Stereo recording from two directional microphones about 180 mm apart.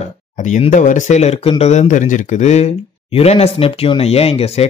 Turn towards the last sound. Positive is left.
turn(degrees=35)  # may be behind; listen again after turning